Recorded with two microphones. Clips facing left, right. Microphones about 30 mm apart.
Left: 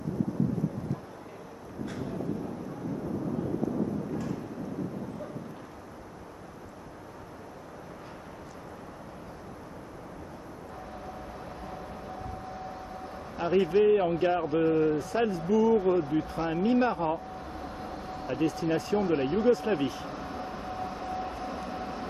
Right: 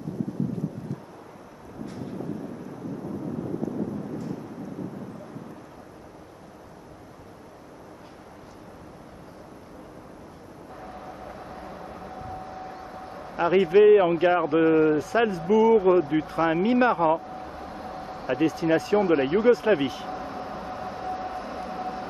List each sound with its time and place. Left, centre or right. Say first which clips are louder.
10.9 s vehicle: right 3 dB; centre
13.5 s speech: right 6 dB; right
17.3 s vehicle: right 2 dB; centre
18.2 s speech: right 5 dB; right
20.1 s vehicle: right 3 dB; centre